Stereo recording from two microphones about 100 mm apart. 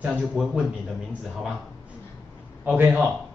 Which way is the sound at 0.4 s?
5° right (ahead or behind).